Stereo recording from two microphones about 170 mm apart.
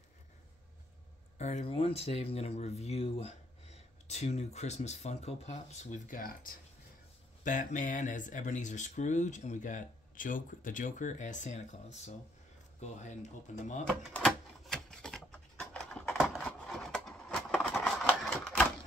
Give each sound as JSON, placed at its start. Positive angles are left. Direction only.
{"t": 1.4, "sound": "speech", "side_deg": 40}
{"t": 14.1, "sound": "typewriter", "side_deg": 5}